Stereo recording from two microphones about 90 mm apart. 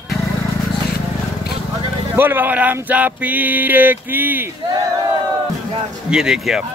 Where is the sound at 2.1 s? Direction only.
20° right (ahead or behind).